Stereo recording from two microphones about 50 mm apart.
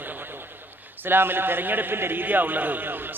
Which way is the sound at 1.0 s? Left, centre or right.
Right.